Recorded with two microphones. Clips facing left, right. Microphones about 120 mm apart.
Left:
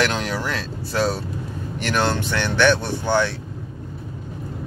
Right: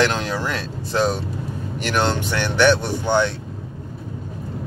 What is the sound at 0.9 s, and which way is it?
Speech, 20° right (ahead or behind).